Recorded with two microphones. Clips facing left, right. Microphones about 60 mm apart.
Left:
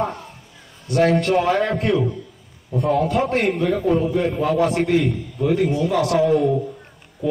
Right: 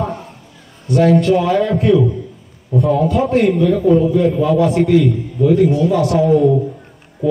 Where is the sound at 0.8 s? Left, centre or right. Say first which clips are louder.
Right 5 dB; left.